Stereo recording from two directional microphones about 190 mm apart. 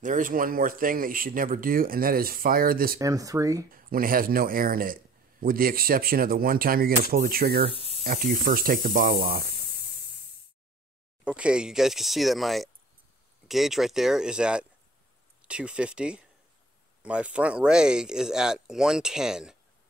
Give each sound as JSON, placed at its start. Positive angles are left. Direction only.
{"t": 0.0, "sound": "speech", "side_deg": -45}
{"t": 3.0, "sound": "speech", "side_deg": -15}
{"t": 3.7, "sound": "speech", "side_deg": -50}
{"t": 9.7, "sound": "a sound", "side_deg": 55}
{"t": 11.2, "sound": "speech", "side_deg": -5}